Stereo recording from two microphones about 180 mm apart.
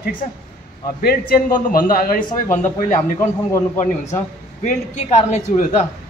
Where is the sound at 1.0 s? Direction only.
55° left (ahead or behind).